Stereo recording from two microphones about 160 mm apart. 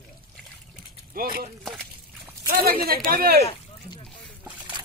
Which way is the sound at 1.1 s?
65° right (ahead or behind).